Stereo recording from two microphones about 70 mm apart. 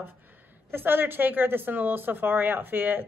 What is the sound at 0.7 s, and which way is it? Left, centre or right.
A woman's voice, right.